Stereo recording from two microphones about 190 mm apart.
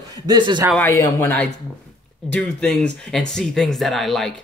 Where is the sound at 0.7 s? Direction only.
15° left (ahead or behind).